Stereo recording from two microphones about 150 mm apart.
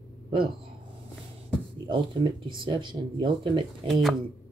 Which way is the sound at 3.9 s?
Centre (ahead or behind).